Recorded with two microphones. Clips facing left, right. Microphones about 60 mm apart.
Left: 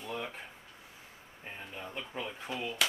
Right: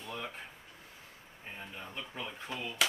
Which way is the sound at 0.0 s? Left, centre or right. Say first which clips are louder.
Left 3 dB; centre.